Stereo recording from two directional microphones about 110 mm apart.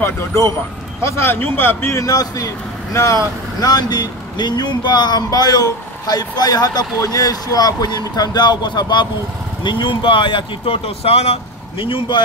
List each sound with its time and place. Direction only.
0.0 s a man's voice: 25° left (ahead or behind); by 11.3 s 65° left (ahead or behind)
11.8 s speech: 50° left (ahead or behind)